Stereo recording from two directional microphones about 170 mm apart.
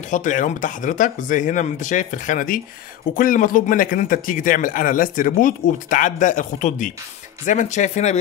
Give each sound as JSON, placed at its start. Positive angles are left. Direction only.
{"t": 0.1, "sound": "a man's voice", "side_deg": 50}